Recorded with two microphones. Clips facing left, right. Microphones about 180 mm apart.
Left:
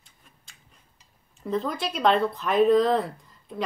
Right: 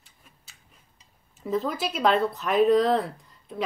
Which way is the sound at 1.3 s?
5° right (ahead or behind).